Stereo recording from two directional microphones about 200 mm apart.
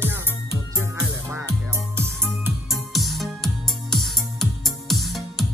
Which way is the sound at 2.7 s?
Centre (ahead or behind).